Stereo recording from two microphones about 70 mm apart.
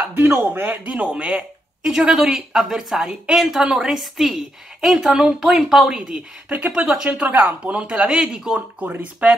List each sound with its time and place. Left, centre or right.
0.1 s speech: right
0.6 s a woman's voice: right